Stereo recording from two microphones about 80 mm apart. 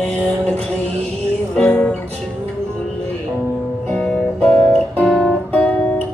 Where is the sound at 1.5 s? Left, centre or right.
Centre.